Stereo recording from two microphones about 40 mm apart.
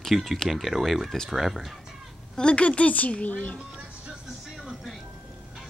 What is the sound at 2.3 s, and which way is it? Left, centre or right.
A woman's voice, left.